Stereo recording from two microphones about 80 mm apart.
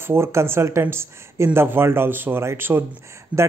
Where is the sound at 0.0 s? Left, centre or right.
Right.